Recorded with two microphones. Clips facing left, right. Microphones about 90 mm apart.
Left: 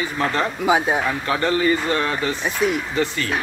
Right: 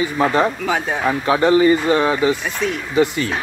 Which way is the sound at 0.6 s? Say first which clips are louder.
Left 2 dB; 15° left (ahead or behind).